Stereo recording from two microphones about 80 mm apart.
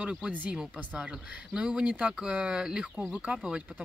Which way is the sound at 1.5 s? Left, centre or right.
Centre.